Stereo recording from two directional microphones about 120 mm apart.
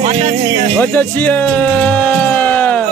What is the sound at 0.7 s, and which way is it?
Speech, 15° left (ahead or behind).